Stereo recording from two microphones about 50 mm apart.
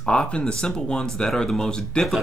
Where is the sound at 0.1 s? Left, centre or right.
Left.